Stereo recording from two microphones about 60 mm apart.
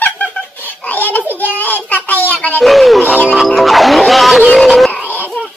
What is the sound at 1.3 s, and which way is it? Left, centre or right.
Child singing, left.